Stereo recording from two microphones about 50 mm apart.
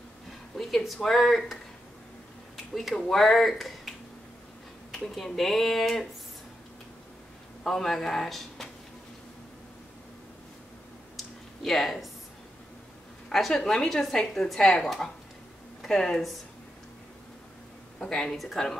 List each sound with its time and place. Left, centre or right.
0.6 s speech: centre
2.7 s speech: centre
4.9 s speech: centre
7.6 s speech: centre
11.1 s a sound: centre
13.3 s a woman's voice: centre
13.6 s speech: centre
17.9 s speech: centre